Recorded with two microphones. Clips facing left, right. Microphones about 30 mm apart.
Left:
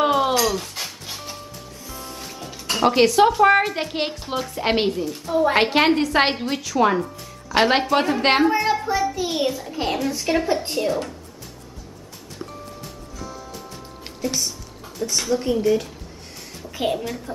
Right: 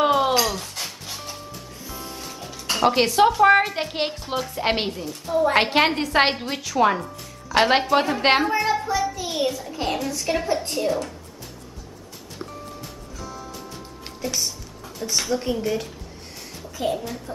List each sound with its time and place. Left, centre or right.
0.0 s a sound: centre
0.6 s music: centre
2.7 s a woman's voice: centre
12.8 s music: centre
14.2 s a woman's voice: centre
16.7 s a woman's voice: left